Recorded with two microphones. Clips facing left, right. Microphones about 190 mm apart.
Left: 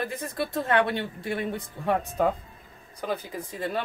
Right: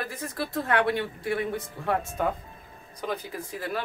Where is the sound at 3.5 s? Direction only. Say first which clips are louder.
Left 2 dB; 25° left (ahead or behind).